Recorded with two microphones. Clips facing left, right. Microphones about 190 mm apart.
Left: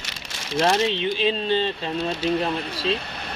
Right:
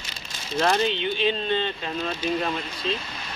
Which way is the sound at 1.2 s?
30° left (ahead or behind).